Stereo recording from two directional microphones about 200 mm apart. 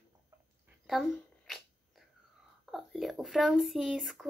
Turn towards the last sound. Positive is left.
turn(degrees=0)  # may be behind; listen again after turning